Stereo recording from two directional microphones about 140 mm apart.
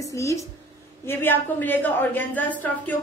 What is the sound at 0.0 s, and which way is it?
A woman's voice, 20° left (ahead or behind).